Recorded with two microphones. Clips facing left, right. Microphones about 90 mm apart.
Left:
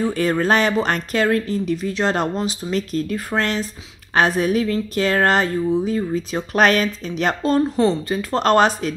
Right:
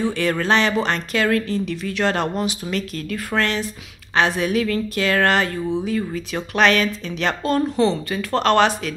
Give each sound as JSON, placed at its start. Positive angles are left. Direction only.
{"t": 0.0, "sound": "speech", "side_deg": 35}
{"t": 7.7, "sound": "speech", "side_deg": 5}
{"t": 8.1, "sound": "speech", "side_deg": 35}